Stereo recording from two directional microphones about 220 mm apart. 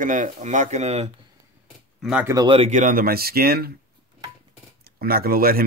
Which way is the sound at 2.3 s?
25° right (ahead or behind).